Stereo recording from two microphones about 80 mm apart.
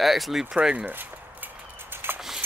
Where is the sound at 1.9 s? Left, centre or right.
Right.